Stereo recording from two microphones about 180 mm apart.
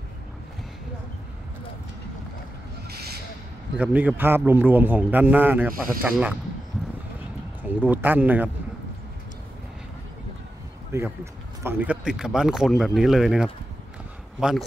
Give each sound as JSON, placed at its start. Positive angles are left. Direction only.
{"t": 2.9, "sound": "a sound", "side_deg": -60}
{"t": 3.7, "sound": "a man's voice", "side_deg": -10}
{"t": 7.8, "sound": "a man's voice", "side_deg": -10}
{"t": 10.9, "sound": "speech", "side_deg": -15}